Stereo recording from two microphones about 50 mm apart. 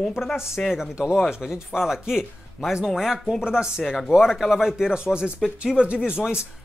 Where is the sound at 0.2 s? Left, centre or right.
Centre.